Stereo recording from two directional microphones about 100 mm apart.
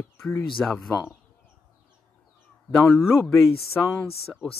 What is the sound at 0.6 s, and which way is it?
Speech, centre (ahead or behind).